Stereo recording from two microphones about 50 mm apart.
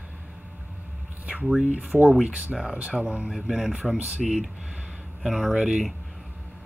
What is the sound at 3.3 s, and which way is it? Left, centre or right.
Speech, centre.